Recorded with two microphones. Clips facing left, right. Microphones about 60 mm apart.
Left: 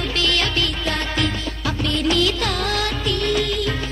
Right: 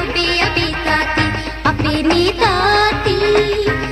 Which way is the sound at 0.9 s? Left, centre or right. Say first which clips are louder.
Right 7 dB; right.